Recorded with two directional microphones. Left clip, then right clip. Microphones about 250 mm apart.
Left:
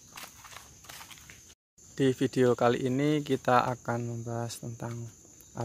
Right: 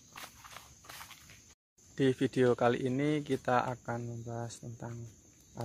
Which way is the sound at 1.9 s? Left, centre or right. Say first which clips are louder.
Left 3 dB; centre.